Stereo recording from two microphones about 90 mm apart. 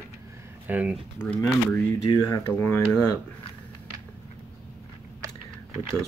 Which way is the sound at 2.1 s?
40° left (ahead or behind).